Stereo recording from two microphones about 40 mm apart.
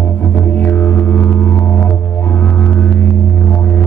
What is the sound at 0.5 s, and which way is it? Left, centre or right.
Music, left.